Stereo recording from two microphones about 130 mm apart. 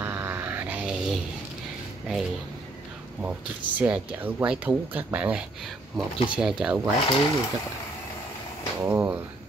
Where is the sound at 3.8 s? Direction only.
10° right (ahead or behind).